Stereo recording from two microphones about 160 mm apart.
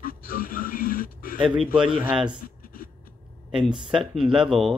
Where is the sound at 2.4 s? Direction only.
60° left (ahead or behind).